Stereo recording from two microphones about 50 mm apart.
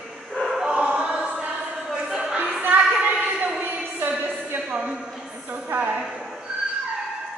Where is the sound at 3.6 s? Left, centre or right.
Right.